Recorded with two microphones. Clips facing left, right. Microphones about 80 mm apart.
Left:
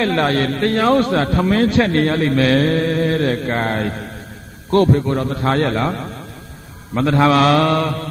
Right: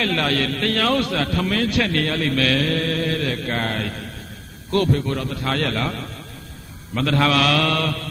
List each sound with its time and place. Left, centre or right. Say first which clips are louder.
0.0 s a man's voice: left 5 dB; left